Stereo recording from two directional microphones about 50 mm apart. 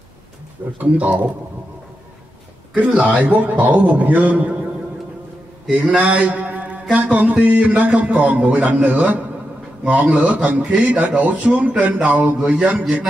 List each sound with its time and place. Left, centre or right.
0.7 s a man's voice: right
2.7 s a man's voice: right
5.7 s a man's voice: right